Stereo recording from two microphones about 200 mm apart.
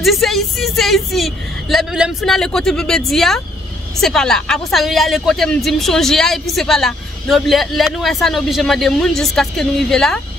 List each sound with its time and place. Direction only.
0.0 s speech: centre (ahead or behind)